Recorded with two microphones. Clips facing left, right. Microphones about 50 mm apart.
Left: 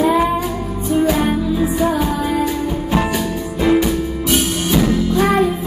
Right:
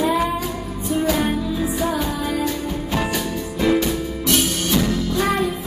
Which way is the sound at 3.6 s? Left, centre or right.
Centre.